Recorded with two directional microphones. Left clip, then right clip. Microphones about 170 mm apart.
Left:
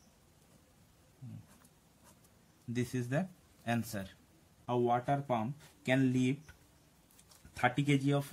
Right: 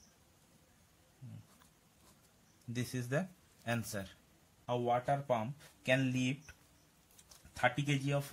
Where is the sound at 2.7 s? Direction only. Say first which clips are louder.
Left 2 dB; 35° right (ahead or behind).